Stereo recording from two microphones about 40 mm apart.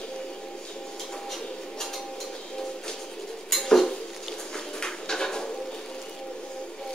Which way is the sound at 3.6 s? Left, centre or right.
Centre.